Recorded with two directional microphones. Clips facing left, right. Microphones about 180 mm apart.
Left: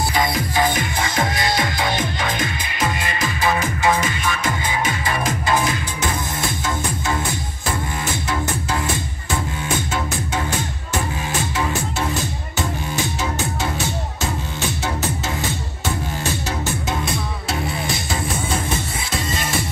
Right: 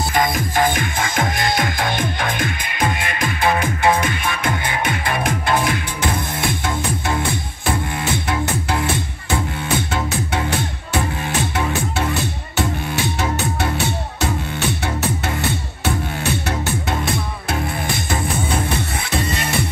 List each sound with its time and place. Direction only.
0.1 s music: 50° right (ahead or behind)
8.1 s music: 60° right (ahead or behind)
11.5 s music: 60° right (ahead or behind)
18.7 s music: 60° right (ahead or behind)